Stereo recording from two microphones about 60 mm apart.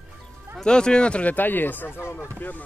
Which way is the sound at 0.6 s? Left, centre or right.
Centre.